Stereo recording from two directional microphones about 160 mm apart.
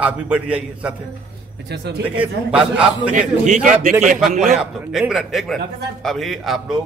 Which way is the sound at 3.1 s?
50° right (ahead or behind).